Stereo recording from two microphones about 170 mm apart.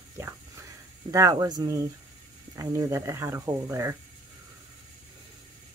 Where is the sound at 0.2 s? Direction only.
15° right (ahead or behind).